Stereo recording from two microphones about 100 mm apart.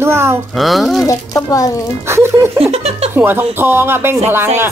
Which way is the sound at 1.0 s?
35° left (ahead or behind).